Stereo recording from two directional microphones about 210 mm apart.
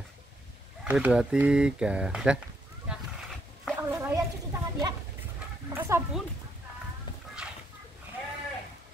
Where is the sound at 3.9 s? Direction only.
15° right (ahead or behind).